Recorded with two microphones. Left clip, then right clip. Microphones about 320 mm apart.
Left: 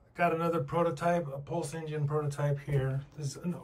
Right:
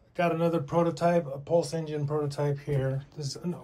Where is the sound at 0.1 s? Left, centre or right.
Centre.